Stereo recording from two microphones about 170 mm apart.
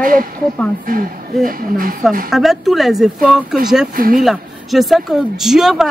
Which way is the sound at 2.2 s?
Centre (ahead or behind).